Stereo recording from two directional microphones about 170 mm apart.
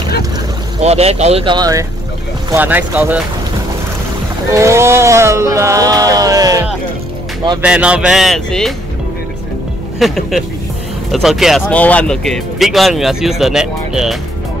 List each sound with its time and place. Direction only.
0.7 s speech: 40° right (ahead or behind)
1.4 s speech: 25° right (ahead or behind)
2.5 s speech: 10° right (ahead or behind)
4.5 s speech: 15° right (ahead or behind)
7.6 s speech: 5° right (ahead or behind)
9.9 s speech: centre (ahead or behind)